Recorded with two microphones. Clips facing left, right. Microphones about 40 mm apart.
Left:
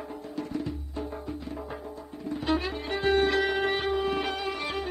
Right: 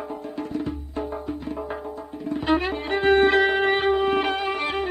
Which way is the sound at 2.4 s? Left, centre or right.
Right.